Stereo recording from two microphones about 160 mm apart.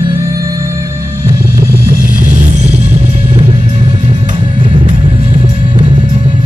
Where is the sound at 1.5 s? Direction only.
65° right (ahead or behind); by 3.4 s 45° right (ahead or behind).